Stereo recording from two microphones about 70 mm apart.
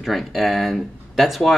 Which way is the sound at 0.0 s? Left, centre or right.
Centre.